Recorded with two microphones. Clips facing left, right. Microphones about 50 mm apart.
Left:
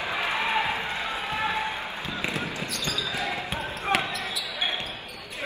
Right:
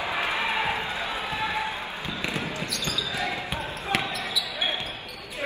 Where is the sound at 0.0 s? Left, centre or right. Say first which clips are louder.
Right 1 dB; right.